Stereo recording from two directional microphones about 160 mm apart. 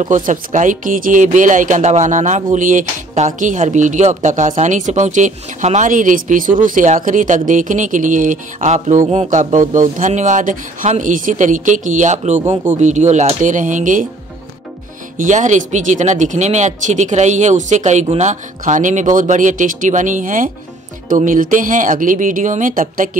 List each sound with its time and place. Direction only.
0.0 s speech: 55° right (ahead or behind)
15.1 s speech: 50° right (ahead or behind)